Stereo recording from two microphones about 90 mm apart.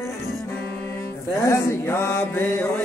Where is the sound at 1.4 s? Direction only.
30° left (ahead or behind).